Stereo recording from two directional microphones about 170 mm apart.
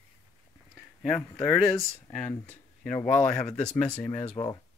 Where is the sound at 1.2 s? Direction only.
10° left (ahead or behind).